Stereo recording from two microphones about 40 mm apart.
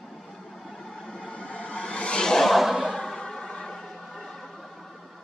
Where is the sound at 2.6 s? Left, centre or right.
Centre.